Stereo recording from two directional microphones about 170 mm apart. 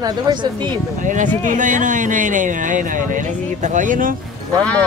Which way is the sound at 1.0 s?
50° right (ahead or behind).